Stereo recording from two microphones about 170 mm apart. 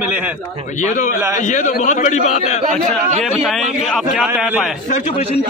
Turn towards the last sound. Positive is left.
turn(degrees=-5)  # may be behind; listen again after turning